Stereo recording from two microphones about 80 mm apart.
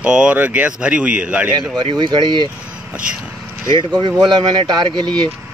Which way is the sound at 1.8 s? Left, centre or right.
Right.